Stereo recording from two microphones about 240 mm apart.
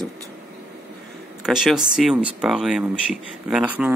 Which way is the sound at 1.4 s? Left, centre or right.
Centre.